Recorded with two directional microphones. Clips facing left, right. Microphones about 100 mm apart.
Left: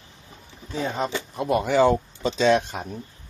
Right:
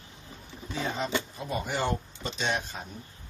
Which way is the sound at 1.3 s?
75° left (ahead or behind).